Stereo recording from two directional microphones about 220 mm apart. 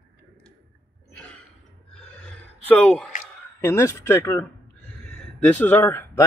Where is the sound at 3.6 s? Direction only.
10° left (ahead or behind).